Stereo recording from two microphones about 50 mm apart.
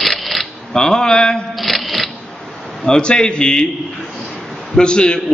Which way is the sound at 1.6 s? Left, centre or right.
Centre.